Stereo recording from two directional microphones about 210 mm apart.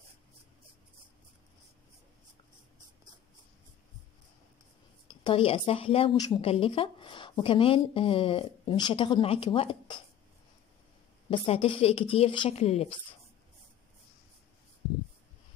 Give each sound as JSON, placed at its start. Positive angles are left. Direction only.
{"t": 5.0, "sound": "a woman's voice", "side_deg": 25}
{"t": 11.2, "sound": "a woman's voice", "side_deg": 25}